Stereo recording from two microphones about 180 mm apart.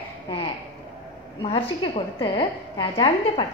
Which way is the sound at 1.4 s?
30° left (ahead or behind).